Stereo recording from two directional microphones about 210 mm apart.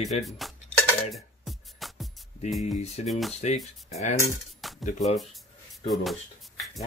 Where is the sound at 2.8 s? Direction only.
30° left (ahead or behind).